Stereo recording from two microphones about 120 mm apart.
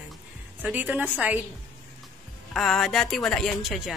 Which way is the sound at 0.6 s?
10° right (ahead or behind).